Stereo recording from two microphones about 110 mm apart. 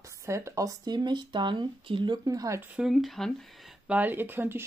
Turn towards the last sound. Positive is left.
turn(degrees=-20)  # may be behind; listen again after turning